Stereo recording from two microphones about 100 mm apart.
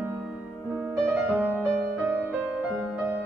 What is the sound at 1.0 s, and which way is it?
Music, 20° right (ahead or behind).